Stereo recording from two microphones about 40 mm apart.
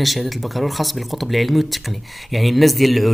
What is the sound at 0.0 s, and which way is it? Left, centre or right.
Speech, centre.